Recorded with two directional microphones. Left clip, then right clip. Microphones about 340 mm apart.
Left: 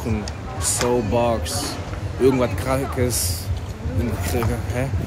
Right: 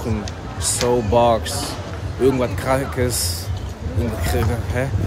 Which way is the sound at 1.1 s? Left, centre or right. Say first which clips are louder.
Right 5 dB; centre.